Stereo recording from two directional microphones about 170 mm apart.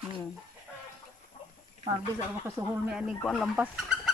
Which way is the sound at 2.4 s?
15° right (ahead or behind).